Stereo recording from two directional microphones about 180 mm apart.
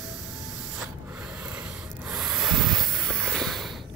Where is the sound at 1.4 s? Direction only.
5° right (ahead or behind).